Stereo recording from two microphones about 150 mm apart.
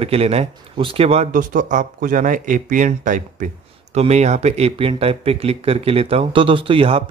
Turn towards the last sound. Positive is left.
turn(degrees=-35)  # may be behind; listen again after turning